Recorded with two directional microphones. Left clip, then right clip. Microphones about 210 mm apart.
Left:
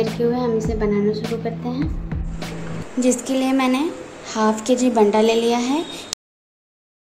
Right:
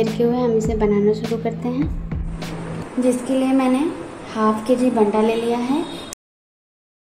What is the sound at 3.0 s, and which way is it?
A woman's voice, 25° left (ahead or behind).